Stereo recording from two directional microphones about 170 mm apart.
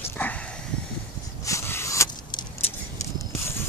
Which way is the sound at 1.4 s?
15° left (ahead or behind).